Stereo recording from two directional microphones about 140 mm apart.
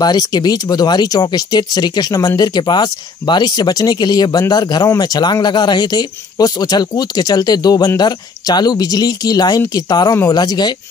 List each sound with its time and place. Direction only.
0.0 s speech: 30° left (ahead or behind)